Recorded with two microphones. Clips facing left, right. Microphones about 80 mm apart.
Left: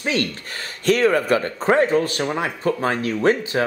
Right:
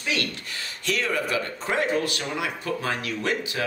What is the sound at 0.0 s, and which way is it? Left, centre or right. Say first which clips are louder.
Speech: left 6 dB; left.